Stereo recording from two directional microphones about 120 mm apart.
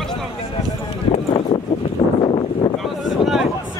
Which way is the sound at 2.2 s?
45° left (ahead or behind).